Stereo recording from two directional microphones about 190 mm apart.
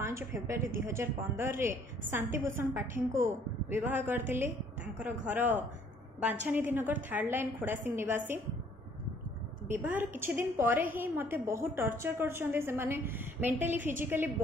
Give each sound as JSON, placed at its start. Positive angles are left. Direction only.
{"t": 0.0, "sound": "a woman's voice", "side_deg": -15}
{"t": 5.2, "sound": "a woman's voice", "side_deg": -10}
{"t": 9.7, "sound": "a woman's voice", "side_deg": -10}
{"t": 13.5, "sound": "a woman's voice", "side_deg": -40}
{"t": 14.0, "sound": "a woman's voice", "side_deg": -10}